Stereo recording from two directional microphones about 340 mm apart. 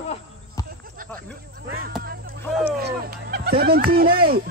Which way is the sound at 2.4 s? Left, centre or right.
Centre.